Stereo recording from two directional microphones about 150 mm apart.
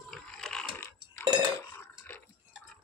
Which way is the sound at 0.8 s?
15° left (ahead or behind).